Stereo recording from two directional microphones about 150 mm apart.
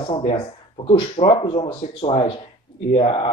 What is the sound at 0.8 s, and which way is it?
Speech, 40° left (ahead or behind).